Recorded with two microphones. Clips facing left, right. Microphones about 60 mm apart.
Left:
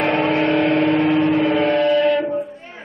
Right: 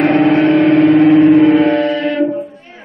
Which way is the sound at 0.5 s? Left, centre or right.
Centre.